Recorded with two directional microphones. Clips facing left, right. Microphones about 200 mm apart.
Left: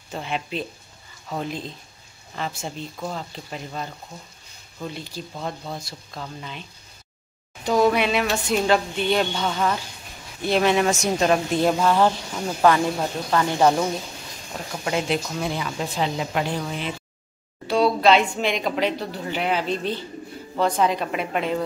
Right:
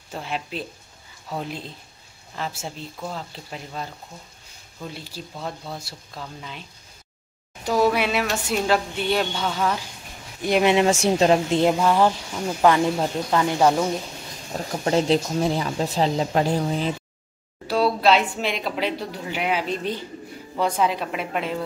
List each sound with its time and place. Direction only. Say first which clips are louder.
0.1 s speech: left 2 dB; centre (ahead or behind)
7.6 s speech: left 1 dB; 5° right (ahead or behind)
10.4 s speech: right 1 dB; 15° right (ahead or behind)
10.9 s speech: right 3 dB; 30° right (ahead or behind)
13.6 s speech: left 1 dB; centre (ahead or behind)
14.5 s speech: right 4 dB; 35° right (ahead or behind)
17.6 s speech: left 1 dB; 5° right (ahead or behind)